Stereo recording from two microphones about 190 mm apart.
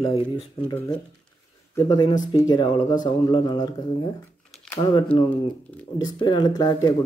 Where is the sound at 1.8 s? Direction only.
20° left (ahead or behind).